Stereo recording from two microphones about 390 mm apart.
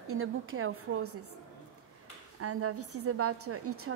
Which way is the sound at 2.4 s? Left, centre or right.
Right.